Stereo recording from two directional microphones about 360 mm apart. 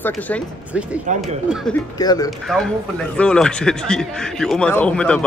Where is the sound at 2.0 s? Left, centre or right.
Centre.